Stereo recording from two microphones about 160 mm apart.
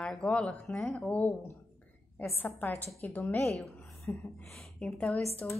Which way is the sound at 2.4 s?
10° left (ahead or behind).